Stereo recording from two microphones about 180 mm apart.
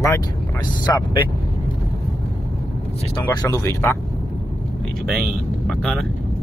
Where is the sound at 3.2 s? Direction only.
15° left (ahead or behind).